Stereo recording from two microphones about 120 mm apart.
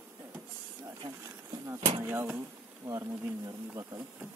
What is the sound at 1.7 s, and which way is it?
Speech, 20° right (ahead or behind).